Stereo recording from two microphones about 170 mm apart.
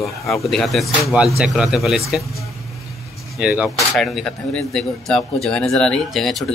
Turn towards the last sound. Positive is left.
turn(degrees=0)  # may be behind; listen again after turning